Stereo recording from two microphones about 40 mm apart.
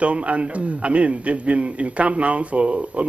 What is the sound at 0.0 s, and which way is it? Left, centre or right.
A man's voice, right.